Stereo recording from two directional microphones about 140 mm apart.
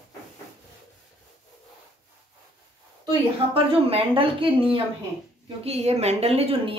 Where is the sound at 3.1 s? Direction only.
40° right (ahead or behind).